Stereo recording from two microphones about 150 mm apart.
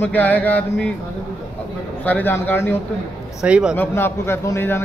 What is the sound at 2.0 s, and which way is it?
Speech, 10° left (ahead or behind).